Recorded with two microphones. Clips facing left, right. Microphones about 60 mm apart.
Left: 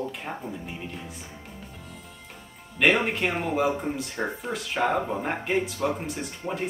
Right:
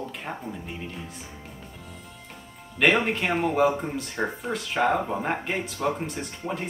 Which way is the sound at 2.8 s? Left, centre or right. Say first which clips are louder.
Even; centre.